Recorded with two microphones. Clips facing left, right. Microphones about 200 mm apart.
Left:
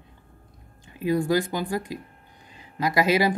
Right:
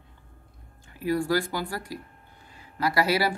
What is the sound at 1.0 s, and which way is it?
Speech, 20° left (ahead or behind).